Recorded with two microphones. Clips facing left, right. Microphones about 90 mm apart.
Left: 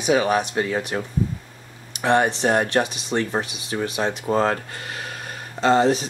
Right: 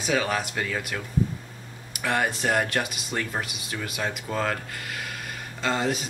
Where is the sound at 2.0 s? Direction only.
25° left (ahead or behind).